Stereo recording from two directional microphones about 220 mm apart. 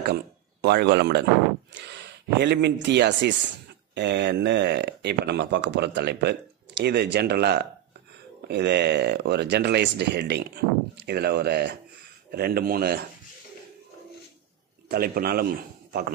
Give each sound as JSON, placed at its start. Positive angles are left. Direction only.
{"t": 0.0, "sound": "speech", "side_deg": -45}
{"t": 14.9, "sound": "a man's voice", "side_deg": -45}